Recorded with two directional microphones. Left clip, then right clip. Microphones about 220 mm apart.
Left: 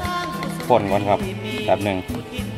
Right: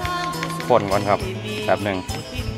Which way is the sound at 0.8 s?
20° left (ahead or behind).